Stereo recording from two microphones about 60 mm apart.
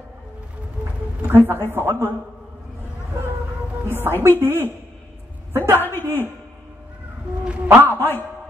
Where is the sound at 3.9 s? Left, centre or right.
Right.